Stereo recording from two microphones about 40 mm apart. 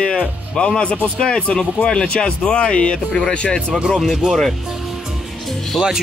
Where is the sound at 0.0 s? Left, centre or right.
Left.